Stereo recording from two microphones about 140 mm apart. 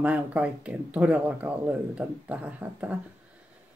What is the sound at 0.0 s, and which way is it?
A woman's voice, 10° right (ahead or behind).